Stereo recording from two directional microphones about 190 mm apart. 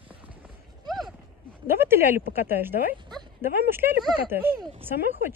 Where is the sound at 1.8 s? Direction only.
10° right (ahead or behind).